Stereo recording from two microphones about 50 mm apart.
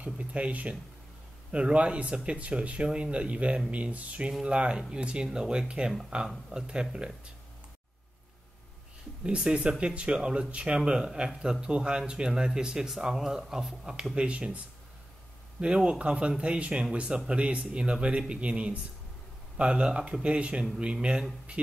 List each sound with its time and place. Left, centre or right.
0.0 s a man's voice: right
9.2 s a man's voice: centre
14.1 s speech: right
15.6 s speech: centre